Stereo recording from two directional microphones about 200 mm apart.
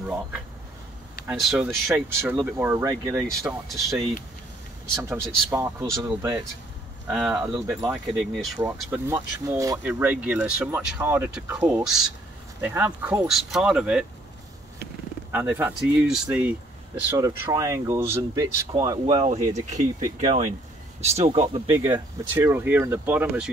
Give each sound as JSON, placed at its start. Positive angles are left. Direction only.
{"t": 1.3, "sound": "speech", "side_deg": 0}
{"t": 4.9, "sound": "speech", "side_deg": -15}
{"t": 7.1, "sound": "speech", "side_deg": -5}
{"t": 15.3, "sound": "speech", "side_deg": -10}
{"t": 17.1, "sound": "speech", "side_deg": -15}
{"t": 21.9, "sound": "speech", "side_deg": -10}